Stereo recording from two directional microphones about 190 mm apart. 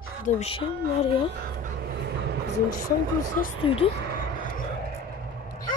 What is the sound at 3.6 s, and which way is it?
Speech, 30° left (ahead or behind).